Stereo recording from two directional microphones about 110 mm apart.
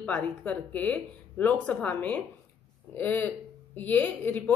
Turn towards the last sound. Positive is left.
turn(degrees=15)  # may be behind; listen again after turning